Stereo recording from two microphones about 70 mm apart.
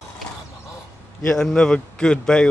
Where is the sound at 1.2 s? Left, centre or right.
Centre.